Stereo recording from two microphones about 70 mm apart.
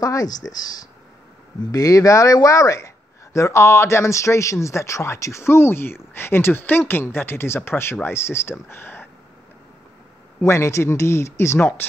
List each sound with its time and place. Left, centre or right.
0.0 s speech: left
1.7 s speech: left
10.4 s speech: left